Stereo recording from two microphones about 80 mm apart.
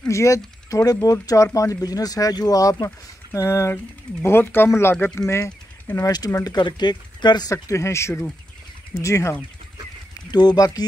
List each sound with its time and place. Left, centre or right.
0.1 s speech: left
6.0 s speech: left
6.4 s speech: left
7.5 s speech: left
10.3 s speech: left